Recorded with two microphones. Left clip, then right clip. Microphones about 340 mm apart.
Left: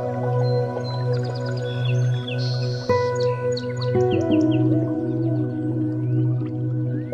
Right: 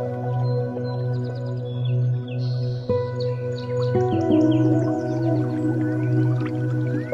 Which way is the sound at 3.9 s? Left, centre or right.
Centre.